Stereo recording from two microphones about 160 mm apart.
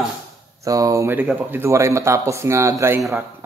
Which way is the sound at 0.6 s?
20° right (ahead or behind).